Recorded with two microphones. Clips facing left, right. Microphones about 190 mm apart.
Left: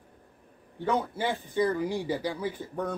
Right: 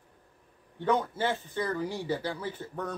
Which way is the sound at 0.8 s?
10° left (ahead or behind).